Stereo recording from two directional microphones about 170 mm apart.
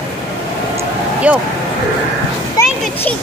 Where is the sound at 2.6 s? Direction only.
15° left (ahead or behind).